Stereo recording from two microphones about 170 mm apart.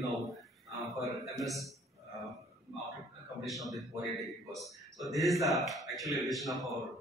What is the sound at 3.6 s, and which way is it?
Speech, centre (ahead or behind).